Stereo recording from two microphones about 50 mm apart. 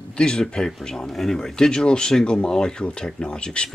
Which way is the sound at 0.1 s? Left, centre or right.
Centre.